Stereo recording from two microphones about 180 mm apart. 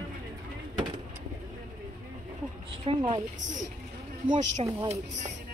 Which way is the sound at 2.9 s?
30° right (ahead or behind).